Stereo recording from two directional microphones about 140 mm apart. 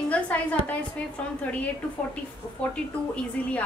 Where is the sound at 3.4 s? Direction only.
10° left (ahead or behind).